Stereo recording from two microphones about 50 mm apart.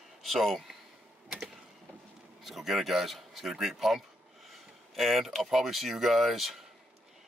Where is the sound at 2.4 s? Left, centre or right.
Centre.